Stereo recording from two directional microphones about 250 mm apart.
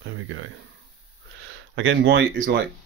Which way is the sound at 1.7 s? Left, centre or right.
Right.